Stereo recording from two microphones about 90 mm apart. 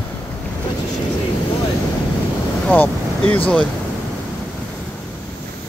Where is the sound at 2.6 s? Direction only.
15° left (ahead or behind).